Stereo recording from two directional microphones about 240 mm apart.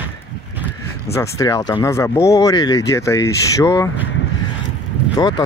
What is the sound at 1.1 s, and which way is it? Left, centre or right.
Speech, centre.